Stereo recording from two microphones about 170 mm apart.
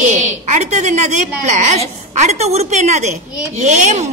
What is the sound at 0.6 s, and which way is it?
A woman's voice, 45° right (ahead or behind).